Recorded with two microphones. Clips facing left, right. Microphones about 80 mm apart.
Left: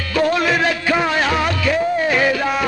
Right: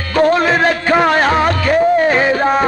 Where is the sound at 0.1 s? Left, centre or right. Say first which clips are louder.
Right 5 dB; right.